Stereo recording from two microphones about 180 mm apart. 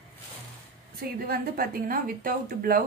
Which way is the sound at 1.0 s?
55° right (ahead or behind).